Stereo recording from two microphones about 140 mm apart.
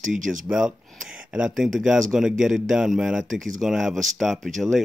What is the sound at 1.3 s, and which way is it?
Speech, 5° right (ahead or behind).